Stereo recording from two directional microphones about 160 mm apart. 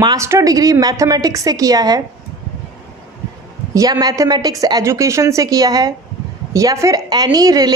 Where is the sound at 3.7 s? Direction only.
25° right (ahead or behind).